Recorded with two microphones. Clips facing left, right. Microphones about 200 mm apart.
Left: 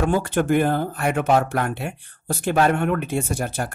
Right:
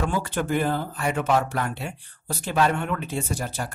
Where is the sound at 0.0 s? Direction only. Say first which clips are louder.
Left 5 dB; 50° left (ahead or behind).